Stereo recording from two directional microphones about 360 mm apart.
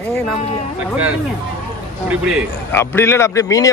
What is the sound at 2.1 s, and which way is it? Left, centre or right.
A man's voice, centre.